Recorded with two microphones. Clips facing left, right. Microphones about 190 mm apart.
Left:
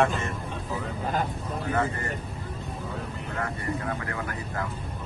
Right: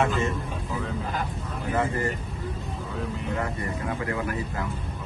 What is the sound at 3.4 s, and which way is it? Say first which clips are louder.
Speech: right 1 dB; 25° right (ahead or behind).